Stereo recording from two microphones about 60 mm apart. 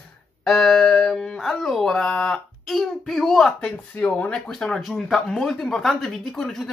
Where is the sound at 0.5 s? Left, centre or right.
Centre.